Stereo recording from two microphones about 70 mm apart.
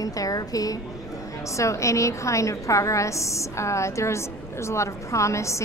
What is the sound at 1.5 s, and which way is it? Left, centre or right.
A woman's voice, left.